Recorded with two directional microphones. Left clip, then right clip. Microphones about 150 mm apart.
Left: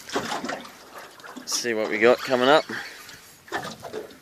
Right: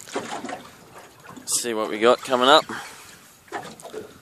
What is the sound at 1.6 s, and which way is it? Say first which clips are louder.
Speech: left 1 dB; 30° right (ahead or behind).